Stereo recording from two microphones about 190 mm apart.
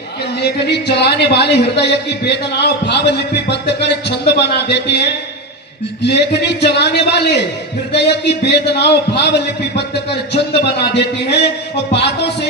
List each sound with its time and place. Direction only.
0.4 s a man's voice: 60° left (ahead or behind)